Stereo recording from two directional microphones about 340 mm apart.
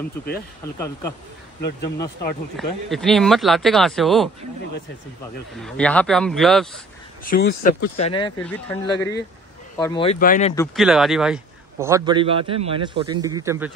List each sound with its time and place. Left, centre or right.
0.7 s speech: centre
2.5 s speech: centre
5.6 s speech: centre
7.2 s speech: left
8.4 s speech: centre; by 10.5 s left
10.5 s a man's voice: centre